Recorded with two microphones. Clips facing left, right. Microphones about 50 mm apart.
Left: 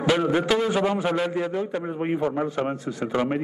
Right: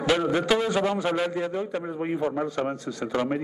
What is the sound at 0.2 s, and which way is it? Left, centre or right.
Speech, centre.